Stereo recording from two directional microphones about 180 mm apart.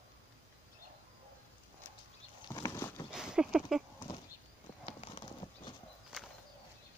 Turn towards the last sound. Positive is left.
turn(degrees=30)  # may be behind; listen again after turning